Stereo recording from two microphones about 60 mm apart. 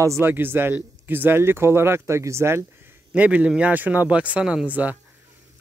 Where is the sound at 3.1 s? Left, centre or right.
Right.